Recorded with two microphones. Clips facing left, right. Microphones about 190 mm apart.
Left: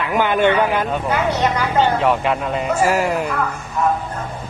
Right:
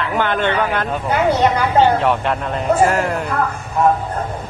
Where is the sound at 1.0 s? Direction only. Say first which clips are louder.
Right 6 dB; 30° right (ahead or behind).